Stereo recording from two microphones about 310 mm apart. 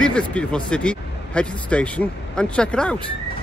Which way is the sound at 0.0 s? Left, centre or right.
Centre.